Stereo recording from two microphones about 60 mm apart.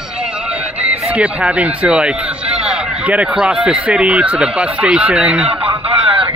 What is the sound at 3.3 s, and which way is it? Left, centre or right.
Speech, centre.